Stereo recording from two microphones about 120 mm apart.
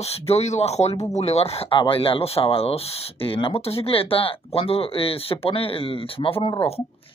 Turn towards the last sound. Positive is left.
turn(degrees=45)  # may be behind; listen again after turning